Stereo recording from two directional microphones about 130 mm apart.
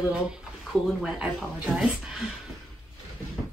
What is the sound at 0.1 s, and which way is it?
Speech, 5° right (ahead or behind).